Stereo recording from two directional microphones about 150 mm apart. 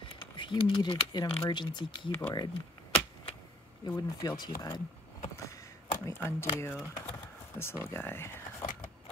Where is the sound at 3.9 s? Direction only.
25° left (ahead or behind).